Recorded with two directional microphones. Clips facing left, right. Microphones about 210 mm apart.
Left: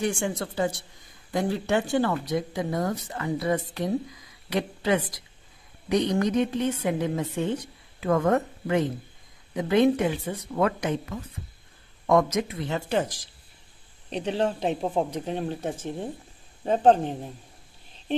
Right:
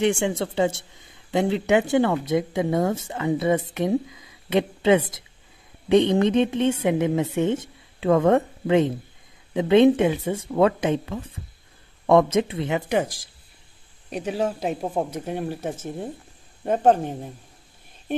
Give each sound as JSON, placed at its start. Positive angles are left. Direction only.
{"t": 0.0, "sound": "a woman's voice", "side_deg": -25}